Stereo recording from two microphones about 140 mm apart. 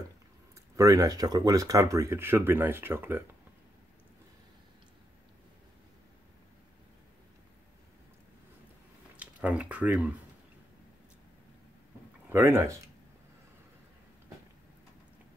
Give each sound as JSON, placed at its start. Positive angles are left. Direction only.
{"t": 0.7, "sound": "speech", "side_deg": -25}
{"t": 9.1, "sound": "speech", "side_deg": -10}
{"t": 12.3, "sound": "speech", "side_deg": -15}